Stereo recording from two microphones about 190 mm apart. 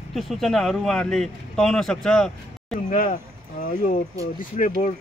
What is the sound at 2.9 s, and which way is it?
Speech, 40° left (ahead or behind).